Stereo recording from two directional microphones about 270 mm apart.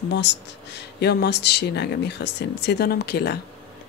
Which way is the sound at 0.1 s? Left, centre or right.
Left.